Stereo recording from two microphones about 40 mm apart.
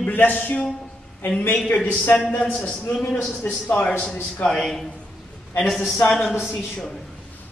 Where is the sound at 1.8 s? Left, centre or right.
Left.